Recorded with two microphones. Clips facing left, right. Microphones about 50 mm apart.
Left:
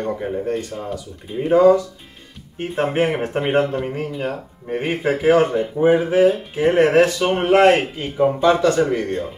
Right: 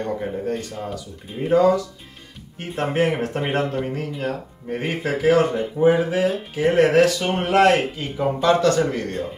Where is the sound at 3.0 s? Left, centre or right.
Left.